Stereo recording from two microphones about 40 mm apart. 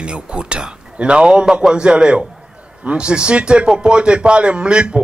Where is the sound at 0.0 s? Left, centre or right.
Right.